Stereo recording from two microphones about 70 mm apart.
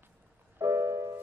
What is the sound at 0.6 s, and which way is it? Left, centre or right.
Music, right.